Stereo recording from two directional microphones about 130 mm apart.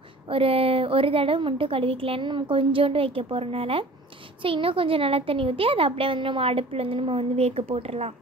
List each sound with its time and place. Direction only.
0.3 s a child's voice: 45° right (ahead or behind)